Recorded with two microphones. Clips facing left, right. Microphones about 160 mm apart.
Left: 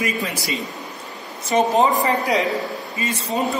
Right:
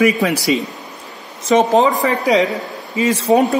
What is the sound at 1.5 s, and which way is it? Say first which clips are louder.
A man's voice: right 4 dB; 90° right.